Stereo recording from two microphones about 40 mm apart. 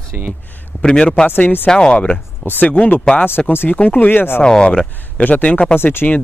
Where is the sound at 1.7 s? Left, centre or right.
Left.